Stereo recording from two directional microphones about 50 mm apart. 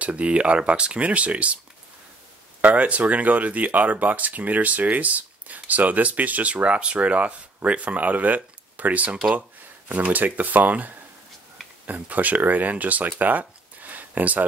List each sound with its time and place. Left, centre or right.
0.0 s speech: right
2.6 s speech: right